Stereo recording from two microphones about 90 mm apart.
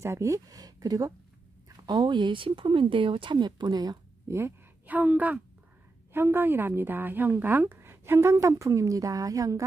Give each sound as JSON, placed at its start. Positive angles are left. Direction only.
{"t": 0.0, "sound": "speech", "side_deg": -35}
{"t": 2.0, "sound": "speech", "side_deg": -65}
{"t": 4.3, "sound": "speech", "side_deg": -30}
{"t": 4.8, "sound": "a woman's voice", "side_deg": -20}